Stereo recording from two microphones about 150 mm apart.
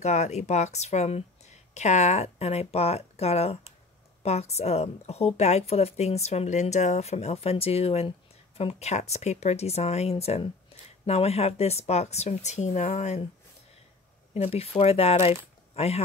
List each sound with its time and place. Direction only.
0.0 s a woman's voice: 50° left (ahead or behind)
14.3 s speech: 45° left (ahead or behind)